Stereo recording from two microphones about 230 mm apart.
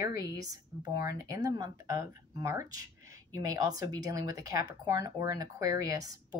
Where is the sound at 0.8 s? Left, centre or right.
Centre.